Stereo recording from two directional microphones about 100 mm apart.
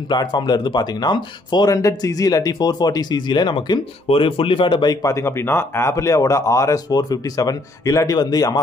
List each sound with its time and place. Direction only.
0.1 s speech: 45° left (ahead or behind)
1.7 s speech: 35° left (ahead or behind); by 3.8 s 50° left (ahead or behind)
4.1 s speech: 60° left (ahead or behind)
5.0 s speech: 30° left (ahead or behind)